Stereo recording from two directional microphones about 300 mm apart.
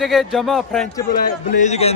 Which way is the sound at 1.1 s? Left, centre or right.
Left.